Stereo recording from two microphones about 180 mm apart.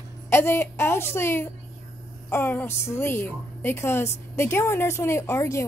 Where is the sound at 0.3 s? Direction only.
15° left (ahead or behind).